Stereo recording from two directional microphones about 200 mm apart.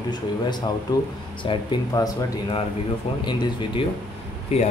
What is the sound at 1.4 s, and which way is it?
Speech, 20° left (ahead or behind).